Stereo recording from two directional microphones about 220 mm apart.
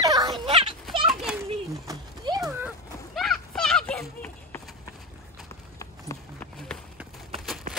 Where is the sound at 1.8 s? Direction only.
15° right (ahead or behind).